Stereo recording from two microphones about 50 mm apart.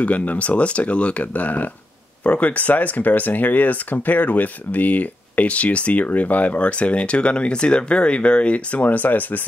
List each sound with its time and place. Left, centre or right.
0.0 s speech: left